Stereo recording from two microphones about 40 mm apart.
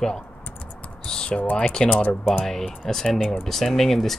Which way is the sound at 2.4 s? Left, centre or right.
Centre.